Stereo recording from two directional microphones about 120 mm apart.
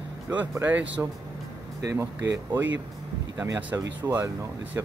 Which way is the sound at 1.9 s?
25° right (ahead or behind).